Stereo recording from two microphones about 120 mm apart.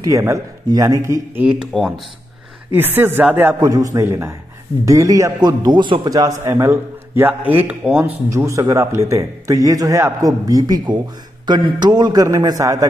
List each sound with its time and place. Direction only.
0.0 s a man's voice: 25° right (ahead or behind)
1.4 s speech: 10° right (ahead or behind)
2.7 s speech: 15° right (ahead or behind)
3.6 s a man's voice: 30° right (ahead or behind); by 8.2 s 15° right (ahead or behind)
8.3 s a man's voice: 25° right (ahead or behind)